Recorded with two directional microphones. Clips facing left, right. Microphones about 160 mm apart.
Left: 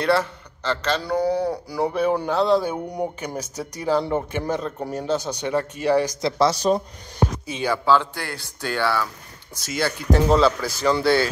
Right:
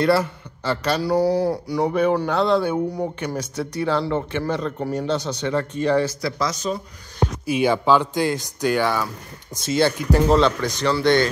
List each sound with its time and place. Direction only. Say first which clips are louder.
0.0 s speech: right 2 dB; centre (ahead or behind)
6.2 s speech: left 5 dB; 30° left (ahead or behind)
7.5 s speech: right 3 dB; 20° right (ahead or behind)
9.6 s speech: right 6 dB; 25° right (ahead or behind)
10.3 s speech: even; 5° left (ahead or behind)